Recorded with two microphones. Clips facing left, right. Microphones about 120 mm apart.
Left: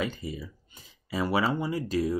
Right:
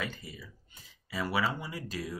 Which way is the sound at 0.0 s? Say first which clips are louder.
Left 7 dB; 25° left (ahead or behind).